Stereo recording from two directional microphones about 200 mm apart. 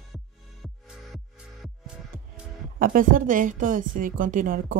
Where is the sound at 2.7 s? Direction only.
45° right (ahead or behind).